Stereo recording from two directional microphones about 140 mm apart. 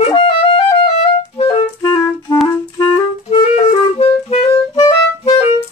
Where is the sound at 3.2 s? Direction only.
45° left (ahead or behind).